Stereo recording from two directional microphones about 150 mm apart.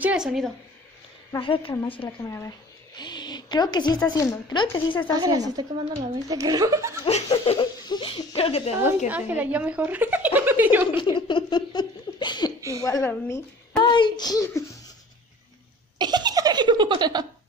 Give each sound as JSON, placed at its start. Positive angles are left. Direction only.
{"t": 0.0, "sound": "a woman's voice", "side_deg": -5}
{"t": 1.3, "sound": "speech", "side_deg": 35}
{"t": 2.2, "sound": "speech", "side_deg": 20}
{"t": 5.2, "sound": "a woman's voice", "side_deg": -25}
{"t": 7.1, "sound": "speech", "side_deg": 45}
{"t": 9.1, "sound": "a woman's voice", "side_deg": -10}
{"t": 11.0, "sound": "laughter", "side_deg": 30}
{"t": 12.8, "sound": "a woman's voice", "side_deg": 20}
{"t": 13.7, "sound": "speech", "side_deg": 30}
{"t": 16.0, "sound": "laughter", "side_deg": -30}